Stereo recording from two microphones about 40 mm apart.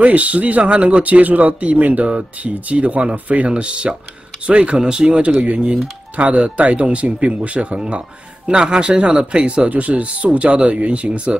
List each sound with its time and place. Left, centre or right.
0.0 s speech: right
8.5 s speech: right